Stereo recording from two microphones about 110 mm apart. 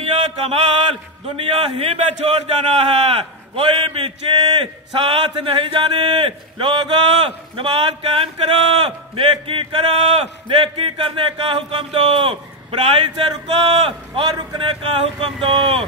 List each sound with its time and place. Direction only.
1.3 s a man's voice: 60° right (ahead or behind)
13.5 s a man's voice: 70° right (ahead or behind)
14.3 s a man's voice: 45° right (ahead or behind)